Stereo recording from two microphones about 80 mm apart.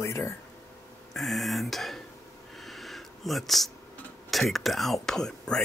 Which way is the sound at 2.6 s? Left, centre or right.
Centre.